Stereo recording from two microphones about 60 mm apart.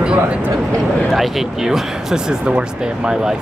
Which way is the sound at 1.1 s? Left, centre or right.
Centre.